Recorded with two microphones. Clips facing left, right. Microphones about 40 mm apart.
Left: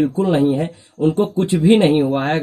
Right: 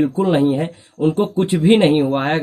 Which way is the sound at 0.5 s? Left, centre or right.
Right.